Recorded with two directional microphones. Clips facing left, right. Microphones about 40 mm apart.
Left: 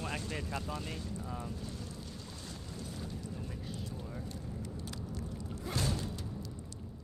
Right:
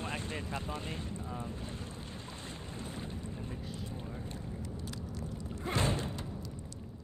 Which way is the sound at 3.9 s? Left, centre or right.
Right.